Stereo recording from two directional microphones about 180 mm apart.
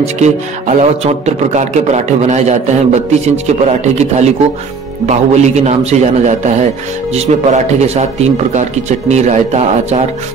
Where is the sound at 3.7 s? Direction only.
40° right (ahead or behind).